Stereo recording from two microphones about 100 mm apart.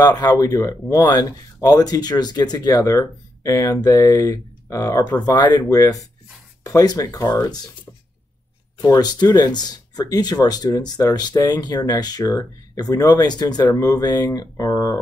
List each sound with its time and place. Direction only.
0.0 s speech: 40° left (ahead or behind)
8.8 s speech: 40° left (ahead or behind)